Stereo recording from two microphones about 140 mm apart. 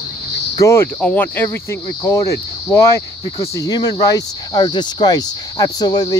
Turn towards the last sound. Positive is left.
turn(degrees=30)  # may be behind; listen again after turning